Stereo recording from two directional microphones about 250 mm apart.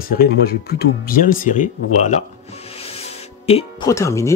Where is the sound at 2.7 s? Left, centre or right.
Left.